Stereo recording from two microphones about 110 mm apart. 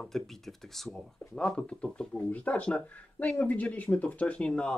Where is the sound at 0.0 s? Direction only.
5° left (ahead or behind).